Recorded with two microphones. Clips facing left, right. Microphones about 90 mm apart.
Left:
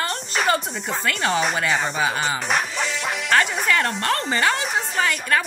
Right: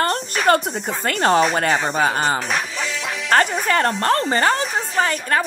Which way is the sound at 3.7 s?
40° right (ahead or behind).